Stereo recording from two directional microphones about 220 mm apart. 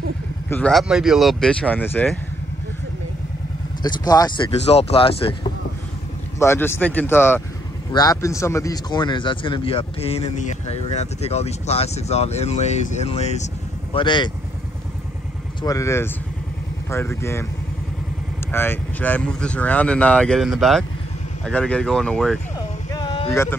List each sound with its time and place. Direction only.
0.5 s speech: 5° left (ahead or behind)
3.8 s speech: 15° left (ahead or behind)
4.5 s a man's voice: 30° left (ahead or behind)
6.4 s a man's voice: 10° left (ahead or behind)
15.6 s speech: 15° left (ahead or behind)
18.5 s speech: 10° left (ahead or behind)
22.9 s a sound: 20° left (ahead or behind)